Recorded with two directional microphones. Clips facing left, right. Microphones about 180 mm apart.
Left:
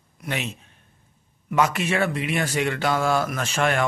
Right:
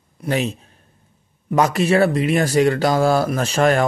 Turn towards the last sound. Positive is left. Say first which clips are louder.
# right 6 dB
turn(degrees=-35)  # may be behind; listen again after turning